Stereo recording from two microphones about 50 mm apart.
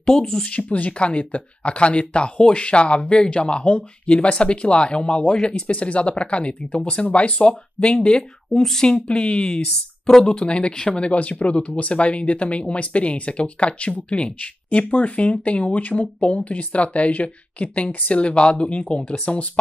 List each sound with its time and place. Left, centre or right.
0.0 s speech: centre
0.5 s speech: left
8.2 s speech: centre; by 19.6 s left